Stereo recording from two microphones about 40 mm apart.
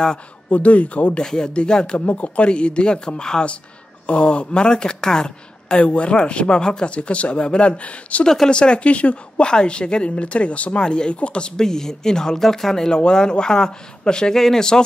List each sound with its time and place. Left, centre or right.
0.5 s speech: left
1.1 s speech: centre
2.0 s speech: left; by 5.8 s centre
5.8 s speech: left
6.9 s speech: left
9.4 s speech: left
11.6 s speech: centre